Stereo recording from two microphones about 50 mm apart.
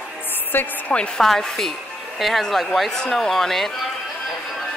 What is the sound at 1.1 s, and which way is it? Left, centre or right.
A woman's voice, centre.